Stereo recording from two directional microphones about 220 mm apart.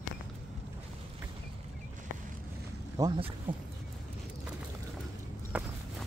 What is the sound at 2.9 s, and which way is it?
Speech, 20° right (ahead or behind).